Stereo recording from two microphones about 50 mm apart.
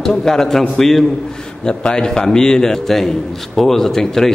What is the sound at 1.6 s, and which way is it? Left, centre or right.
A man's voice, centre.